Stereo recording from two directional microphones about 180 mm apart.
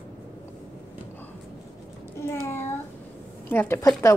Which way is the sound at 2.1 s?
15° left (ahead or behind).